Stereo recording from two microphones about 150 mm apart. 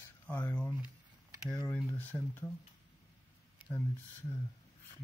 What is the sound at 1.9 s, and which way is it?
Speech, 15° left (ahead or behind).